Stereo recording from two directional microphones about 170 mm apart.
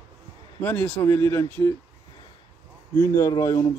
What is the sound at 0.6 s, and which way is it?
Speech, 10° left (ahead or behind).